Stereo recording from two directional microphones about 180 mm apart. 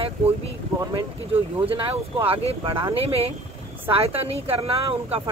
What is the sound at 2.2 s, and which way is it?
Speech, 30° right (ahead or behind).